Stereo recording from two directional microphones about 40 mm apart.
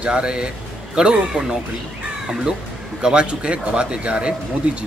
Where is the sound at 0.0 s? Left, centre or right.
Right.